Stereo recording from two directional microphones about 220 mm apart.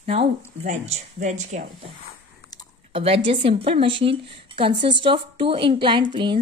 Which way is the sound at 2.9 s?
25° right (ahead or behind).